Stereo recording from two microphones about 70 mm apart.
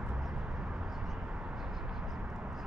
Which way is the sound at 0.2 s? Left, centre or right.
Centre.